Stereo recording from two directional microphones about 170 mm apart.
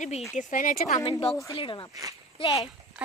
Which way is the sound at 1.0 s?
30° left (ahead or behind).